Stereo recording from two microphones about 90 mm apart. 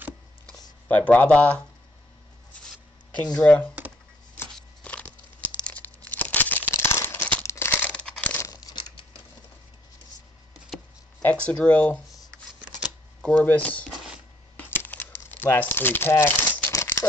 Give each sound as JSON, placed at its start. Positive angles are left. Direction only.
{"t": 0.8, "sound": "speech", "side_deg": 20}
{"t": 3.3, "sound": "speech", "side_deg": 15}
{"t": 4.8, "sound": "a sound", "side_deg": 15}
{"t": 5.7, "sound": "crumpling", "side_deg": 15}
{"t": 7.9, "sound": "crumpling", "side_deg": 15}
{"t": 8.4, "sound": "crumpling", "side_deg": 40}
{"t": 11.2, "sound": "speech", "side_deg": 10}
{"t": 13.2, "sound": "speech", "side_deg": 15}
{"t": 13.9, "sound": "a sound", "side_deg": -5}
{"t": 14.6, "sound": "crumpling", "side_deg": 20}